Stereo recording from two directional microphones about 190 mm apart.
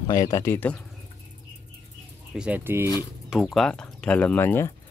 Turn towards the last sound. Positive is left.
turn(degrees=10)  # may be behind; listen again after turning